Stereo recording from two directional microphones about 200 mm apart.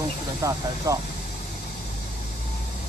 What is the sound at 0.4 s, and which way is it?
Speech, 15° right (ahead or behind).